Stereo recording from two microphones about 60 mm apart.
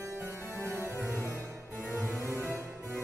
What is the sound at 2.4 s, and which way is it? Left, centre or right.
Music, right.